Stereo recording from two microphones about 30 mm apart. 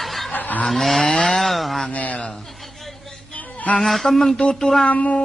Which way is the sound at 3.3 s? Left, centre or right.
Left.